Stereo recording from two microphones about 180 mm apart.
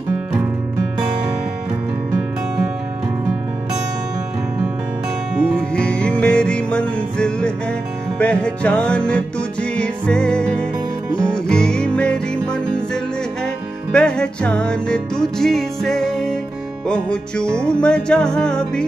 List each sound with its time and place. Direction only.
5.6 s music: 5° left (ahead or behind)